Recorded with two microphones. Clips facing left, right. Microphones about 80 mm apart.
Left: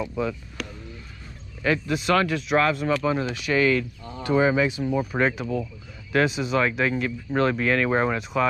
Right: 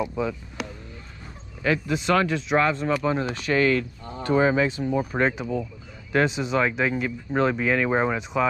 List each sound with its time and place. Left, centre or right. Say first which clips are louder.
0.0 s speech: right 1 dB; centre
1.6 s speech: even; centre
3.3 s speech: right 1 dB; right
5.1 s speech: even; centre